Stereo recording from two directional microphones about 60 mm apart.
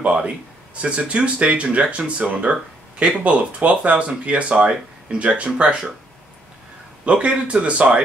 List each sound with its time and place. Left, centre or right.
0.0 s speech: centre
7.1 s speech: centre